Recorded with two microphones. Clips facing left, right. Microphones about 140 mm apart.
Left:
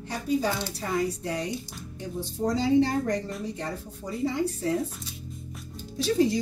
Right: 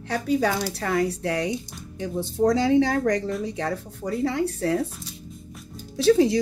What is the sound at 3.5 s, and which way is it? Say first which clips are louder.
A woman's voice: right 6 dB; 75° right (ahead or behind).